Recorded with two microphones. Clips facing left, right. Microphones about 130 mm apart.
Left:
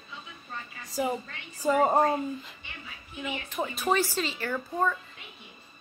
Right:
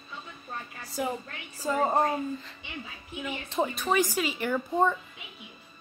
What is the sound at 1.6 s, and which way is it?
Speech, 10° left (ahead or behind).